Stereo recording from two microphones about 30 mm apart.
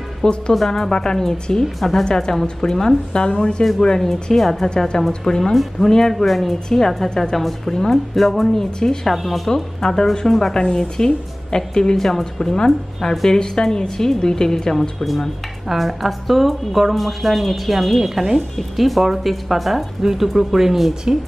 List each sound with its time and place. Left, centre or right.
0.2 s a woman's voice: left; by 2.0 s centre
2.0 s a woman's voice: left
3.1 s a woman's voice: left
5.4 s speech: centre
6.1 s speech: centre
9.8 s speech: left
10.2 s speech: centre
10.5 s a woman's voice: left
15.7 s speech: centre
18.6 s speech: centre